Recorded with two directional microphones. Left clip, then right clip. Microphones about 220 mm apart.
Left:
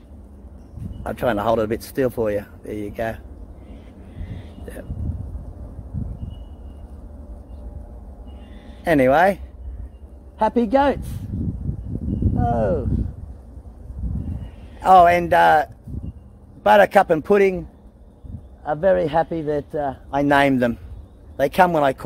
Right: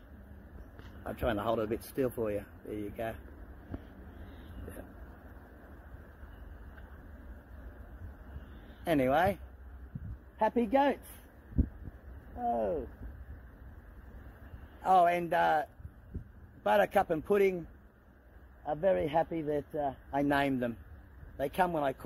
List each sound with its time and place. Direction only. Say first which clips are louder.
1.0 s speech: left 12 dB; 10° left (ahead or behind)
8.8 s speech: left 13 dB; 10° left (ahead or behind)
10.4 s speech: left 11 dB; 5° left (ahead or behind)
12.4 s speech: left 10 dB; 10° left (ahead or behind)
14.8 s speech: left 14 dB; 15° left (ahead or behind)
18.7 s a man's voice: left 12 dB; 10° left (ahead or behind)